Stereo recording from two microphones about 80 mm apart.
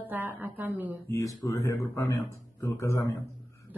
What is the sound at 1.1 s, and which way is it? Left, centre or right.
Speech, left.